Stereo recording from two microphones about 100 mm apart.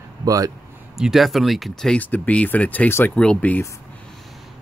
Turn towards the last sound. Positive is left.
turn(degrees=15)  # may be behind; listen again after turning